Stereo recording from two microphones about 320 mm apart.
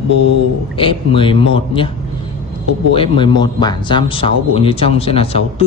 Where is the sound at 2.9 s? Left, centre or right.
Centre.